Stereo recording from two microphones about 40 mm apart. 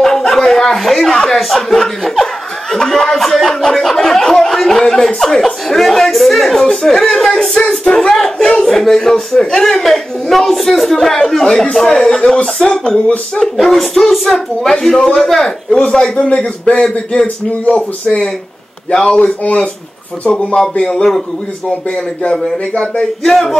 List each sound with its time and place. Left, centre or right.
0.3 s speech: centre
3.1 s a child's voice: centre
15.8 s a man's voice: left
17.7 s speech: left
18.9 s a man's voice: left
20.6 s speech: centre
23.2 s speech: centre